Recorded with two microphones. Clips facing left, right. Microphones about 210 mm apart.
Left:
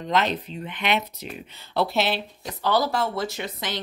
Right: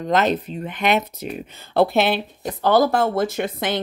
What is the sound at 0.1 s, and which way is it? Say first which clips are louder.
Speech: right 5 dB; 45° right (ahead or behind).